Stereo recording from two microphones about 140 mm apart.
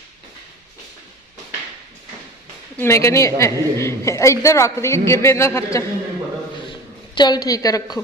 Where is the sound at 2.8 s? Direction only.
20° left (ahead or behind).